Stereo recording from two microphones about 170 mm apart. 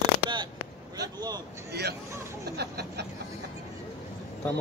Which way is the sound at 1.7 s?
75° right (ahead or behind).